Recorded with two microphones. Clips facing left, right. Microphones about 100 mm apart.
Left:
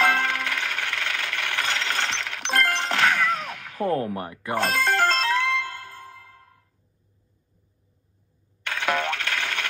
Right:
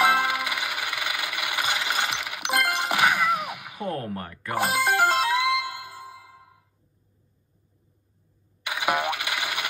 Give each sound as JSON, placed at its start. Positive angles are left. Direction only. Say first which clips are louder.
{"t": 0.0, "sound": "coin", "louder": "right 1 dB", "side_deg": -15}
{"t": 4.0, "sound": "speech", "louder": "left 4 dB", "side_deg": 20}
{"t": 4.6, "sound": "music", "louder": "even", "side_deg": -15}
{"t": 8.6, "sound": "coin", "louder": "even", "side_deg": -15}